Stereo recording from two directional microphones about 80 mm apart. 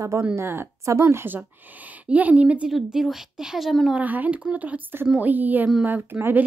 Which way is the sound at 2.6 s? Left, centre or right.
Centre.